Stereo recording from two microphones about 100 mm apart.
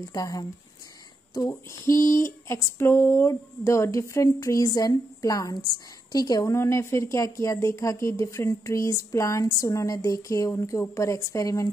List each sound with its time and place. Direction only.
0.1 s speech: 40° left (ahead or behind)
1.5 s a woman's voice: 30° left (ahead or behind)